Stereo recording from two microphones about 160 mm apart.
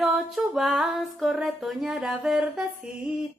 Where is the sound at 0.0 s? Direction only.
Centre (ahead or behind).